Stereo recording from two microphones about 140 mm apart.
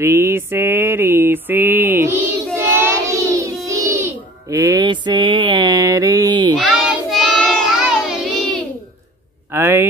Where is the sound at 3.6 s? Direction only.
20° right (ahead or behind).